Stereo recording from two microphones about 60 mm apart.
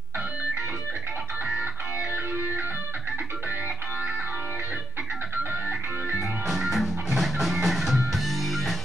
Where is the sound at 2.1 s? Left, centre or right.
Right.